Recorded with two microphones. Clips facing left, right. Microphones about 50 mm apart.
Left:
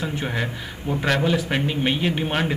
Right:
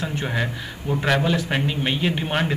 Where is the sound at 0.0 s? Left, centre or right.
Centre.